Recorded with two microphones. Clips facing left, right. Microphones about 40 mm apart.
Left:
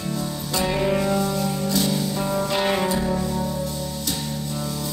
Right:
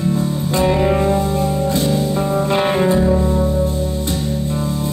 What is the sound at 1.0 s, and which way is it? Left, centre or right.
Music, right.